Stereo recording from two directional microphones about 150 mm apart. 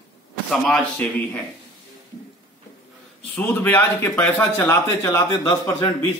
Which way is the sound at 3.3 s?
10° left (ahead or behind).